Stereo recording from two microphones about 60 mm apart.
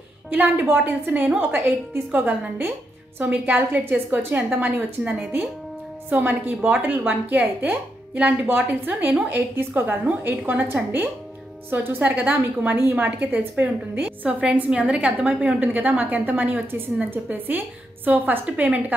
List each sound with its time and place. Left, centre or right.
0.3 s a woman's voice: right
3.2 s a woman's voice: right
10.0 s a woman's voice: right
14.0 s a woman's voice: right